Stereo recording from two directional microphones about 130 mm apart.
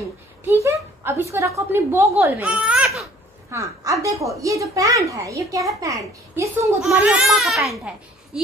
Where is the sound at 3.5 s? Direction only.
25° right (ahead or behind).